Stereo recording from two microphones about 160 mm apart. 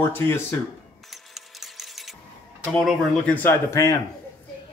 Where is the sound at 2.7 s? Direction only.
5° left (ahead or behind).